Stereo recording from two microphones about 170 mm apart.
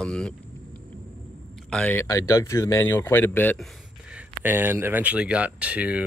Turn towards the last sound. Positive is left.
turn(degrees=-5)  # may be behind; listen again after turning